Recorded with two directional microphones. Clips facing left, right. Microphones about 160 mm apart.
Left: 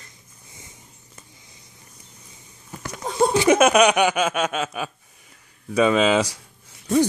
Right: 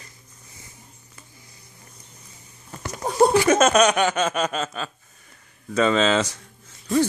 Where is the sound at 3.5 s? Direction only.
10° left (ahead or behind).